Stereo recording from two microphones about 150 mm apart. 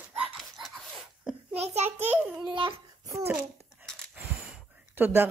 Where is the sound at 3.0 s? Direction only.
20° right (ahead or behind).